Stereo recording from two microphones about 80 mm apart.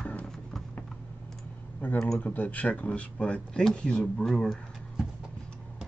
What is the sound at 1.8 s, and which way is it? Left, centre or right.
Speech, left.